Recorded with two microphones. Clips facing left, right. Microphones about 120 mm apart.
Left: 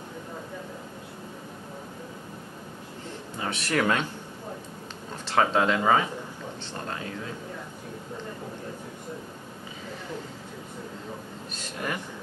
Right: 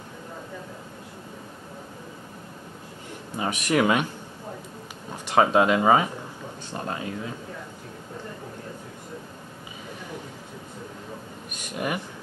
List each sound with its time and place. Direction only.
3.3 s a man's voice: 15° right (ahead or behind)
5.1 s speech: 15° right (ahead or behind)
11.5 s a sound: 15° right (ahead or behind)